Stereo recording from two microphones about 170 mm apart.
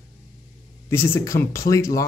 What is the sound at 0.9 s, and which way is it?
Speech, 15° left (ahead or behind).